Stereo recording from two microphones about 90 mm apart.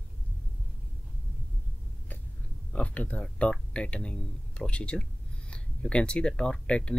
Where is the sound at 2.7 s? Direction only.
15° left (ahead or behind).